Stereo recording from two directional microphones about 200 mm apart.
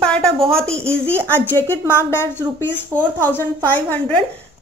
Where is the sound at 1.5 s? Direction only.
10° left (ahead or behind).